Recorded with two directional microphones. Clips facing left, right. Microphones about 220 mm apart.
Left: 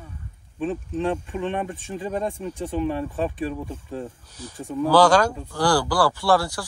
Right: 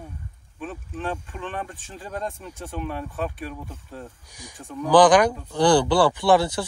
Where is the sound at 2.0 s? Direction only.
10° left (ahead or behind).